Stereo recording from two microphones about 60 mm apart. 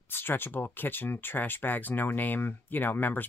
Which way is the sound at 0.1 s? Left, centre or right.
Left.